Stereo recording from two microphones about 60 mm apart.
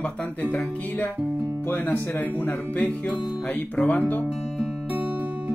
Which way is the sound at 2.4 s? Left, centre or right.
Left.